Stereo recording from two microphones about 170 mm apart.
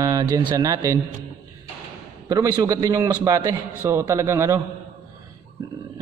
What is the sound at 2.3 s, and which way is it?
A man's voice, 25° right (ahead or behind).